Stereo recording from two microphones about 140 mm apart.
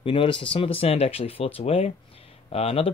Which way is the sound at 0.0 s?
40° left (ahead or behind).